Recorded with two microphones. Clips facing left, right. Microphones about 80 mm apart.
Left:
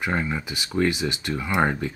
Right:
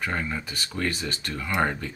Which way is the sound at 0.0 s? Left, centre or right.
Centre.